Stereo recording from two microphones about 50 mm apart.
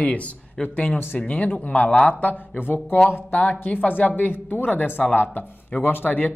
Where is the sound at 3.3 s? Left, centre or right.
Left.